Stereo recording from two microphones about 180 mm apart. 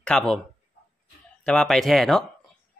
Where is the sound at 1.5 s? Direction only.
5° left (ahead or behind).